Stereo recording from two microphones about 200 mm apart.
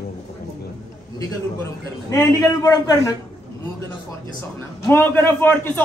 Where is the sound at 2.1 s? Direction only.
15° left (ahead or behind).